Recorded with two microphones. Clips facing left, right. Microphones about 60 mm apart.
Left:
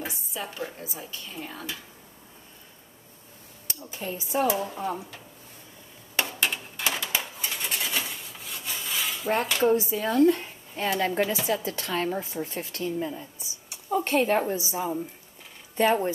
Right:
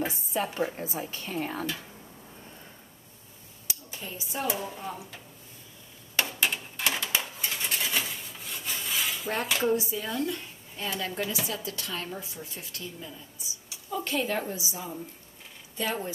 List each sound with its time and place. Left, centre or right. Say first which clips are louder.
0.7 s a woman's voice: right 4 dB; right
4.0 s a woman's voice: left 8 dB; left
4.5 s speech: left 6 dB; centre
6.1 s a sound: left 1 dB; centre
9.7 s a woman's voice: left 5 dB; left
10.0 s speech: left 10 dB; left
11.2 s a woman's voice: left 6 dB; left